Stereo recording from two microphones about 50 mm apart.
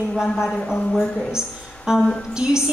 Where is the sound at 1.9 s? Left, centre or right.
Centre.